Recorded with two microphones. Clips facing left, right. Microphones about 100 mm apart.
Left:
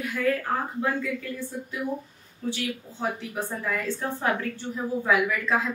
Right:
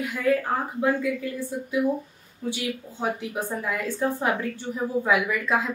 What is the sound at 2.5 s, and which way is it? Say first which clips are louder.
A woman's voice: right 1 dB; 15° right (ahead or behind).